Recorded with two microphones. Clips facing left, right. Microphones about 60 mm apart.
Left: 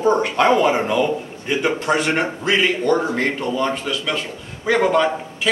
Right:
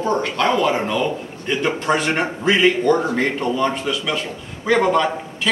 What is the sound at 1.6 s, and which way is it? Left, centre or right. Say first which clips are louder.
A man's voice: even; centre.